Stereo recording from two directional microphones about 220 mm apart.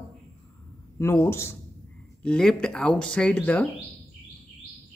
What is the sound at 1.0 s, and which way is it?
Speech, 10° left (ahead or behind).